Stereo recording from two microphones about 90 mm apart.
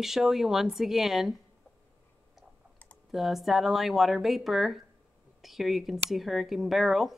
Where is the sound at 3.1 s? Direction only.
Centre (ahead or behind).